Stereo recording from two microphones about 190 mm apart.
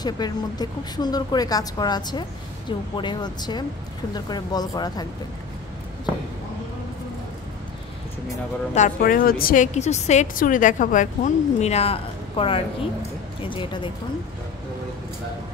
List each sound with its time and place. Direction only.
0.0 s a woman's voice: 20° left (ahead or behind)
8.7 s a woman's voice: 45° left (ahead or behind); by 13.8 s 25° left (ahead or behind)